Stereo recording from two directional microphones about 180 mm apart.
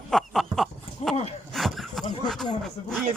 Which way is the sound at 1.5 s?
Centre (ahead or behind).